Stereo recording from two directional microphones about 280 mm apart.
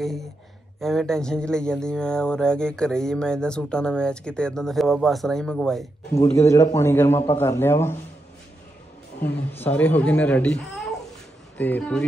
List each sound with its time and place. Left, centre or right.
0.0 s speech: centre
6.2 s a man's voice: left
6.5 s a man's voice: centre
9.2 s speech: centre